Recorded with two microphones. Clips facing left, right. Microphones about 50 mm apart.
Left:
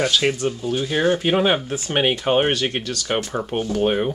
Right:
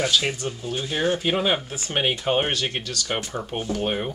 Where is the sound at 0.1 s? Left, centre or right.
Centre.